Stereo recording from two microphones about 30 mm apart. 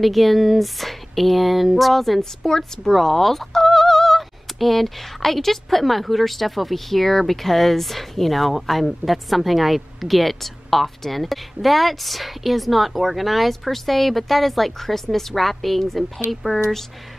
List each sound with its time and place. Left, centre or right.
0.0 s speech: centre
2.5 s a woman's voice: centre
2.9 s speech: centre